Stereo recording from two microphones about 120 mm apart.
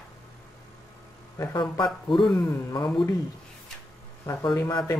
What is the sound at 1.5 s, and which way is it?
Speech, 40° left (ahead or behind).